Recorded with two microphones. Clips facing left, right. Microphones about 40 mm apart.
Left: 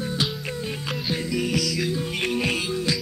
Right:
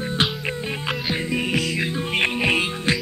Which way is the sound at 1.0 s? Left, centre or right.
Right.